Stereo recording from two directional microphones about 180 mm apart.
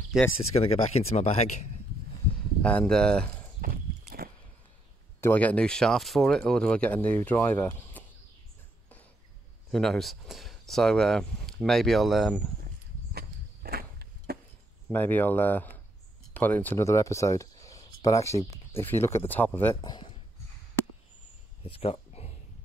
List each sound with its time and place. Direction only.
0.4 s speech: 35° left (ahead or behind)
2.6 s speech: 5° left (ahead or behind)
5.2 s speech: 10° left (ahead or behind)
9.7 s speech: centre (ahead or behind)
13.1 s walk: 60° right (ahead or behind)
14.9 s speech: 10° left (ahead or behind)
19.7 s speech: 25° left (ahead or behind)
21.6 s a sound: 30° left (ahead or behind)